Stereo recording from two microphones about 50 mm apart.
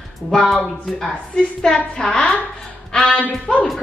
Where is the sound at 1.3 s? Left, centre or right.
Centre.